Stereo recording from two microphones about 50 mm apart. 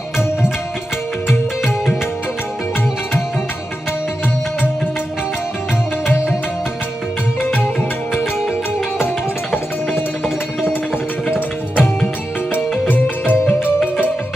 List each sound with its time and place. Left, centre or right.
12.5 s music: left
13.2 s music: left